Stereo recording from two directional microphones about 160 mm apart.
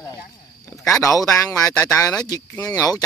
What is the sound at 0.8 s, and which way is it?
Speech, 20° left (ahead or behind).